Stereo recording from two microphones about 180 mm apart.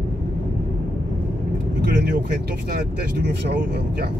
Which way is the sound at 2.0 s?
65° right (ahead or behind).